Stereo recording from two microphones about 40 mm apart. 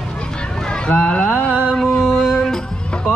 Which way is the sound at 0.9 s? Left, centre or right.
Left.